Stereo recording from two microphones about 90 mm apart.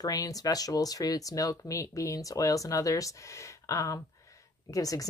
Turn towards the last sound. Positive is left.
turn(degrees=40)  # may be behind; listen again after turning